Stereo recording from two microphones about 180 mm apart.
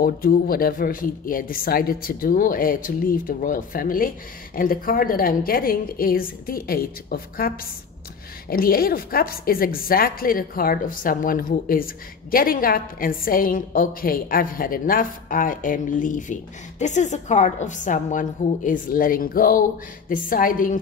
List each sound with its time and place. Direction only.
0.0 s a woman's voice: 55° left (ahead or behind)